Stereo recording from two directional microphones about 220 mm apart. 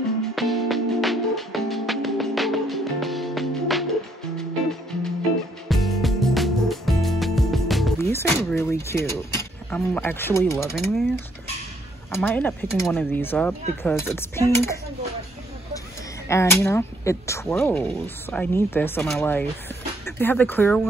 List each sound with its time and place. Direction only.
0.4 s music: centre (ahead or behind)
5.7 s music: centre (ahead or behind)
8.0 s speech: 10° left (ahead or behind)
10.8 s speech: centre (ahead or behind)
16.3 s speech: 10° left (ahead or behind)